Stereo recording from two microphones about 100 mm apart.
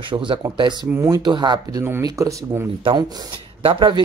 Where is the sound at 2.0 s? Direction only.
30° right (ahead or behind).